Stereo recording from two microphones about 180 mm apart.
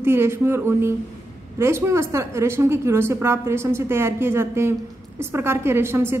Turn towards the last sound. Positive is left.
turn(degrees=-15)  # may be behind; listen again after turning